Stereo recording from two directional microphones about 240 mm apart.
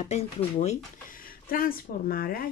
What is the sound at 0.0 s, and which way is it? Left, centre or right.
Speech, left.